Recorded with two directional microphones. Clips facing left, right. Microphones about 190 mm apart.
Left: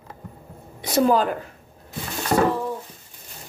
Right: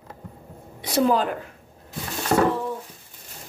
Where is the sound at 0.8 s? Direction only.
45° left (ahead or behind).